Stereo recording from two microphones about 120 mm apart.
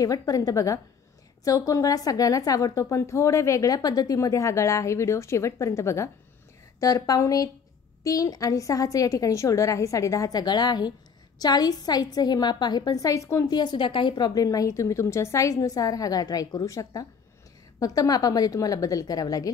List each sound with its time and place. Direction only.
0.0 s a woman's voice: 30° left (ahead or behind)